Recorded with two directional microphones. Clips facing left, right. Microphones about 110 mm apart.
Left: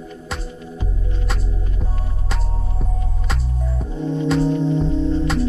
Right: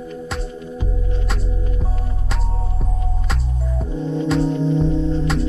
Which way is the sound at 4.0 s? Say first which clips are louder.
Left 1 dB; 15° left (ahead or behind).